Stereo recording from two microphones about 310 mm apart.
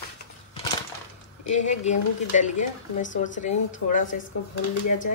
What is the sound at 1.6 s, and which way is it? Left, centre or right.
Speech, left.